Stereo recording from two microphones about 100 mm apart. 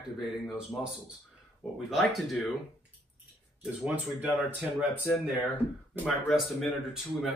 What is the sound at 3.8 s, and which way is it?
Speech, 15° right (ahead or behind).